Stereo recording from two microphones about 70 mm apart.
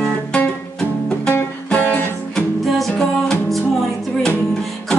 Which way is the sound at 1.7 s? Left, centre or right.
Centre.